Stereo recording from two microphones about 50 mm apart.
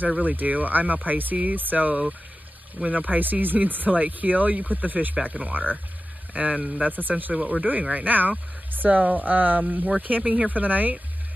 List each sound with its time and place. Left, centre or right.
0.2 s speech: right